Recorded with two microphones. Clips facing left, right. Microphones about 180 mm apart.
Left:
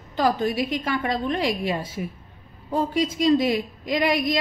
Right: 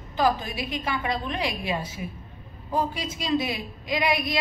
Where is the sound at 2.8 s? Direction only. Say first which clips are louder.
Left 8 dB; 50° left (ahead or behind).